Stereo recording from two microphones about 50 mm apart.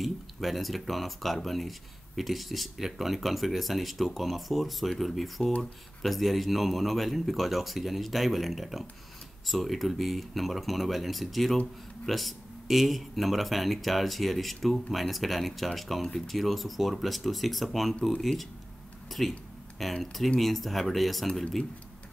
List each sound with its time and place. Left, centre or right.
0.0 s speech: centre
21.3 s speech: centre